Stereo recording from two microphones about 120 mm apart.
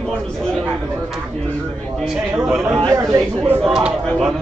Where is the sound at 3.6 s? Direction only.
Centre (ahead or behind).